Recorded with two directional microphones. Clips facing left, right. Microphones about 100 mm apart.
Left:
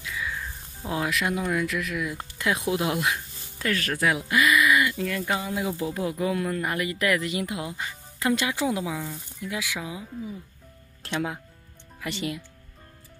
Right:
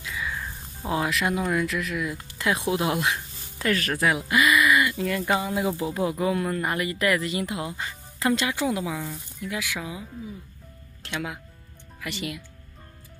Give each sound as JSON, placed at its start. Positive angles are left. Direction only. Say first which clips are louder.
{"t": 0.0, "sound": "speech", "louder": "right 1 dB", "side_deg": -5}
{"t": 8.4, "sound": "a woman's voice", "louder": "even", "side_deg": 15}
{"t": 8.9, "sound": "speech", "louder": "even", "side_deg": 0}
{"t": 9.5, "sound": "a woman's voice", "louder": "even", "side_deg": 15}
{"t": 11.1, "sound": "speech", "louder": "left 3 dB", "side_deg": 30}